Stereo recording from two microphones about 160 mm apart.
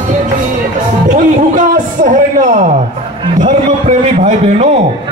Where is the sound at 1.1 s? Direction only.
55° right (ahead or behind).